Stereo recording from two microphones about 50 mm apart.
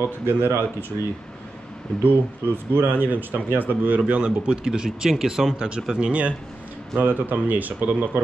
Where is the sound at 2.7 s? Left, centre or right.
Right.